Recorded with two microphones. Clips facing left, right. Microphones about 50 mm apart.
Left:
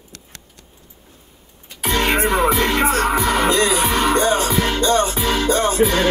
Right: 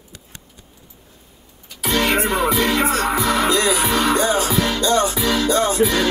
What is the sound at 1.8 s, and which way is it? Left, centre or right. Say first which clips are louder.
Music: even; left.